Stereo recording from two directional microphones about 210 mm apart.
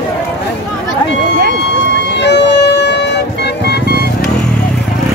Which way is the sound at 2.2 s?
55° left (ahead or behind).